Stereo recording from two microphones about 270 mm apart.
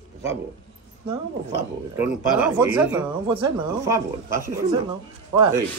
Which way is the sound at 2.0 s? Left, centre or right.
Centre.